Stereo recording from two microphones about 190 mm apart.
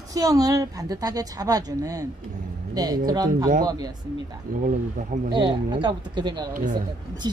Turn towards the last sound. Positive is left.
turn(degrees=-25)  # may be behind; listen again after turning